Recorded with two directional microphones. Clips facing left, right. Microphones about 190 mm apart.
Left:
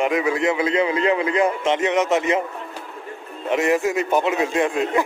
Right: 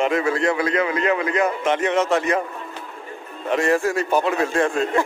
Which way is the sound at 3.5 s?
20° left (ahead or behind).